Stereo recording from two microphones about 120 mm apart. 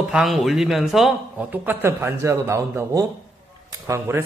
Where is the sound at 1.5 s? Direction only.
15° right (ahead or behind).